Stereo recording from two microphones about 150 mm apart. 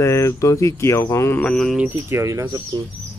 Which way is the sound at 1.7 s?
15° right (ahead or behind).